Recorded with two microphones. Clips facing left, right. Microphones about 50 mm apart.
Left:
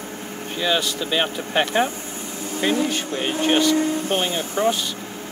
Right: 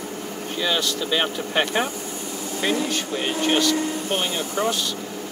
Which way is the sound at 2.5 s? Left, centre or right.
Left.